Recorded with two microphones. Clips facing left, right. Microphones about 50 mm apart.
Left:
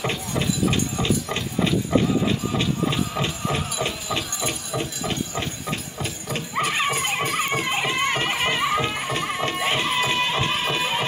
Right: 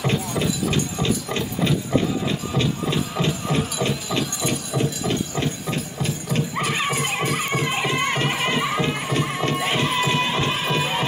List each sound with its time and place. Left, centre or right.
1.0 s a sound: centre
1.7 s music: centre
3.4 s clip-clop: centre